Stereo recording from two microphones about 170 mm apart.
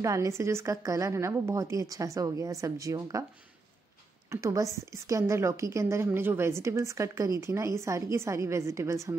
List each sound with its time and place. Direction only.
0.0 s a woman's voice: 20° right (ahead or behind)
4.3 s a woman's voice: 15° right (ahead or behind)